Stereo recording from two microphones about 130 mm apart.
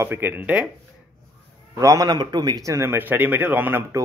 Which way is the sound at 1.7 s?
25° right (ahead or behind).